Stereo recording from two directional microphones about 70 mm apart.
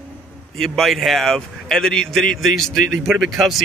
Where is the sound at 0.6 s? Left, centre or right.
Centre.